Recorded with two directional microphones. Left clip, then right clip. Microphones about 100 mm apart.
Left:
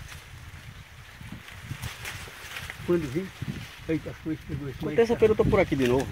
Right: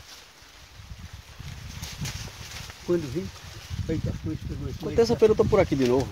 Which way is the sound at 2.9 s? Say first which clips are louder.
Even; 30° left (ahead or behind).